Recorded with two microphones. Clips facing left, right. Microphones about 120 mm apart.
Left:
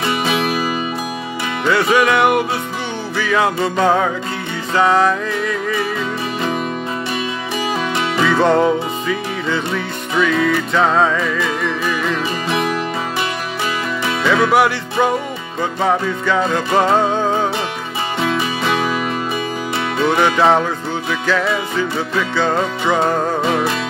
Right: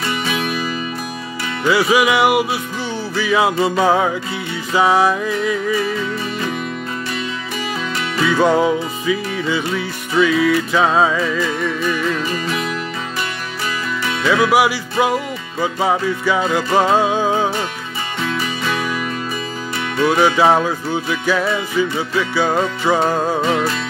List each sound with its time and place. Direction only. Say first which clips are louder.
1.6 s music: even; 5° right (ahead or behind)
8.4 s music: even; 5° right (ahead or behind)
14.2 s music: even; 5° right (ahead or behind)
18.2 s music: left 3 dB; 30° left (ahead or behind)
20.1 s music: even; 5° right (ahead or behind)
23.4 s music: even; 15° left (ahead or behind)